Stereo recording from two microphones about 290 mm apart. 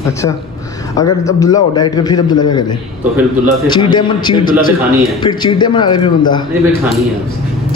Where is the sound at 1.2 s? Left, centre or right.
Centre.